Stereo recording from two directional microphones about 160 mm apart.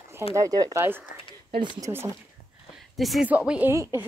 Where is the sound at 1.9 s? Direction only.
15° right (ahead or behind).